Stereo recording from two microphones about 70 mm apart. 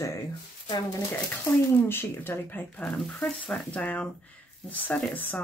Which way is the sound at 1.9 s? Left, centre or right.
Left.